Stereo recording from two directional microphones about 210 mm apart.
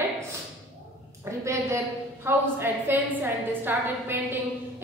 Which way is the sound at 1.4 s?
15° right (ahead or behind).